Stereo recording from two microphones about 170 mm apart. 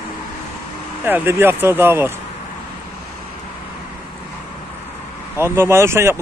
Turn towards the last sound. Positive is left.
turn(degrees=-15)  # may be behind; listen again after turning